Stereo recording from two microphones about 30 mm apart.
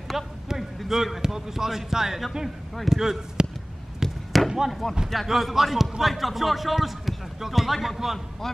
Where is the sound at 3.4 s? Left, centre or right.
Right.